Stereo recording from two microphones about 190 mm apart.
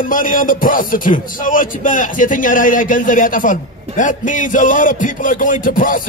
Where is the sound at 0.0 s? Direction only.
45° left (ahead or behind).